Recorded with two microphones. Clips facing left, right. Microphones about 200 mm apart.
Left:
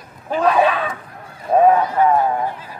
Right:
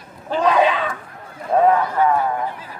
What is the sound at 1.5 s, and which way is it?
Speech, 20° left (ahead or behind).